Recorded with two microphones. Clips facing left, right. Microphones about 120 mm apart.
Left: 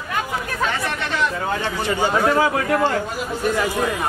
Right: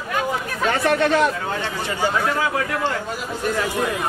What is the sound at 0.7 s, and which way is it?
Chatter, 45° right (ahead or behind).